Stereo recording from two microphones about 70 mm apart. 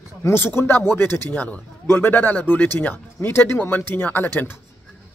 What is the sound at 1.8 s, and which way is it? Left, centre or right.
Speech, left.